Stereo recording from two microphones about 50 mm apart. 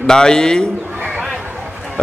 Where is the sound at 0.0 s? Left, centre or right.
Centre.